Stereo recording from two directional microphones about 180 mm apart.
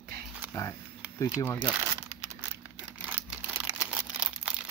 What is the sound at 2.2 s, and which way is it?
Crumpling, 15° right (ahead or behind).